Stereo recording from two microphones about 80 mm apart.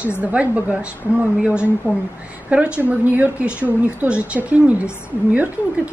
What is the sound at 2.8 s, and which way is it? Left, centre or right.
A woman's voice, right.